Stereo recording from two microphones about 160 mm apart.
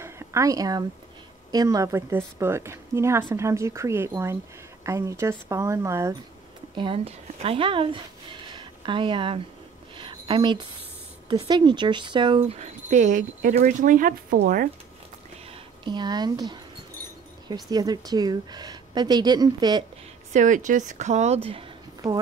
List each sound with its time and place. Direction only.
0.0 s a sound: 20° right (ahead or behind)
1.5 s a woman's voice: 25° right (ahead or behind)
6.8 s speech: 35° right (ahead or behind)
9.9 s a sound: 30° right (ahead or behind)
11.2 s a woman's voice: 30° right (ahead or behind)
12.4 s speech: 45° right (ahead or behind); by 14.7 s 60° right (ahead or behind)
15.8 s a woman's voice: 25° right (ahead or behind)
17.6 s a woman's voice: 25° right (ahead or behind)
20.3 s speech: 50° right (ahead or behind); by 21.6 s 35° right (ahead or behind)